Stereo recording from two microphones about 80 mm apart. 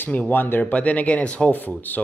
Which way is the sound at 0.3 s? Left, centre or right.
Left.